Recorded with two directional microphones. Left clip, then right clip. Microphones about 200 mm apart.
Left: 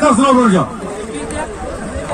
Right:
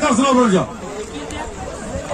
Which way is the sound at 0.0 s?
50° left (ahead or behind).